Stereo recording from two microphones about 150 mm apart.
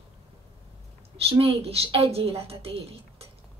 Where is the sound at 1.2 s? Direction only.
40° right (ahead or behind).